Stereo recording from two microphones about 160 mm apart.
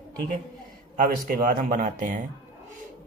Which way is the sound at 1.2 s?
60° right (ahead or behind).